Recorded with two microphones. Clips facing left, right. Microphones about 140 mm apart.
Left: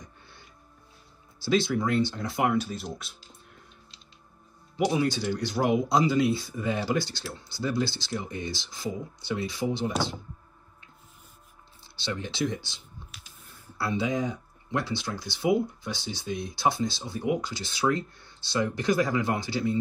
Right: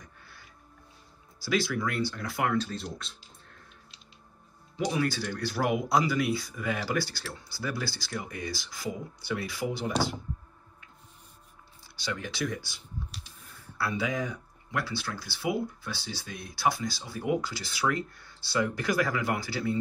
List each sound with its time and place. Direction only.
0.0 s music: 25° left (ahead or behind)
1.4 s speech: 25° left (ahead or behind); by 3.2 s 10° left (ahead or behind)
4.7 s speech: 20° left (ahead or behind)
11.8 s speech: 25° left (ahead or behind)